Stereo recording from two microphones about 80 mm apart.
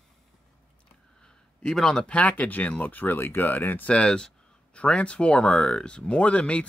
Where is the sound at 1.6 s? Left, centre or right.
Centre.